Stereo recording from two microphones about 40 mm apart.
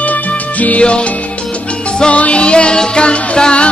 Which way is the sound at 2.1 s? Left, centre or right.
Left.